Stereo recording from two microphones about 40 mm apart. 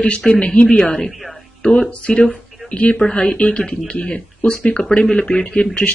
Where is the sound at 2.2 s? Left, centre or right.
Left.